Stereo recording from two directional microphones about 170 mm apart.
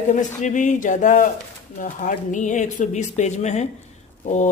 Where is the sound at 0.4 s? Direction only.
45° left (ahead or behind).